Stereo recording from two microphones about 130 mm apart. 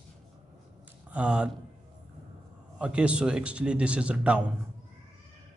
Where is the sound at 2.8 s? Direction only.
10° right (ahead or behind).